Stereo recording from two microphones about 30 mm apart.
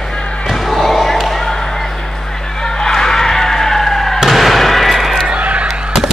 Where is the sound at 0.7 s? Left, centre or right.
Centre.